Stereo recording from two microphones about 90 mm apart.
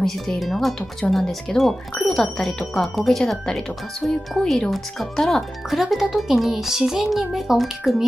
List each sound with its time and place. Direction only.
0.0 s speech: centre (ahead or behind)